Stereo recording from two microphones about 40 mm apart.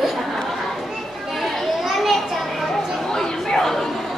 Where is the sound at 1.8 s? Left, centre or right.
Centre.